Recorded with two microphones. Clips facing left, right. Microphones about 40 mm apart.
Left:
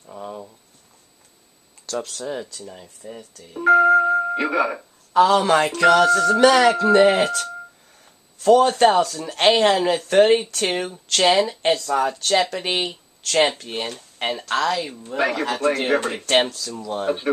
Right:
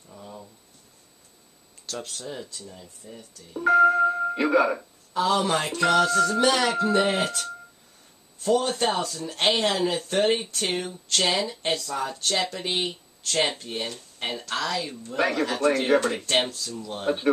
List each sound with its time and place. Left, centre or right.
0.0 s a sound: left
2.1 s speech: left
3.0 s music: left
3.6 s music: centre
5.1 s speech: left
6.0 s music: left
6.3 s a sound: left
6.7 s speech: left
14.8 s speech: left
15.1 s a man's voice: centre
15.9 s speech: left
16.3 s speech: left
17.1 s a man's voice: centre